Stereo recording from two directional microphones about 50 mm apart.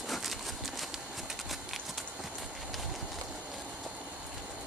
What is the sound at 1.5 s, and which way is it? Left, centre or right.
Clip-clop, centre.